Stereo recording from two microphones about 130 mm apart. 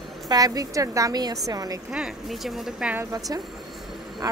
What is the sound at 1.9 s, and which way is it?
Speech, 5° right (ahead or behind).